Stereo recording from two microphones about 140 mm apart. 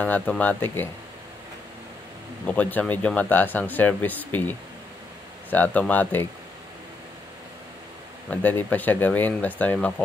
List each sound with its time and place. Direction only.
0.0 s speech: 10° left (ahead or behind)
2.4 s speech: 10° left (ahead or behind)
8.3 s speech: 15° left (ahead or behind)